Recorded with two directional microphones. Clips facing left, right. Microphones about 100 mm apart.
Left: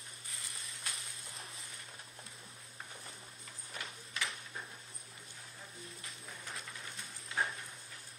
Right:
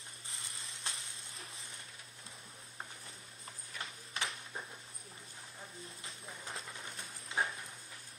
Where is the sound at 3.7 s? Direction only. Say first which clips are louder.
Even; 40° left (ahead or behind).